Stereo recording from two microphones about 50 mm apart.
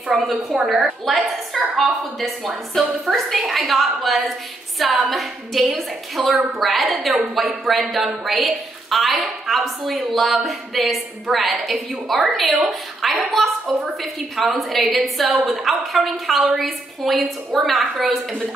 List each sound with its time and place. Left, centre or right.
0.1 s a woman's voice: centre
0.5 s a woman's voice: right
0.7 s a woman's voice: centre
14.6 s a woman's voice: centre